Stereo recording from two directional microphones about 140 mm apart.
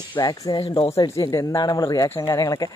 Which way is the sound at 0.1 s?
30° left (ahead or behind).